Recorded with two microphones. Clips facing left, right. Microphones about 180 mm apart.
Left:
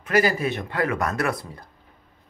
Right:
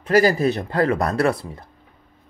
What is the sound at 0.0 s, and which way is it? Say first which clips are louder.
Speech: right 5 dB; 35° right (ahead or behind).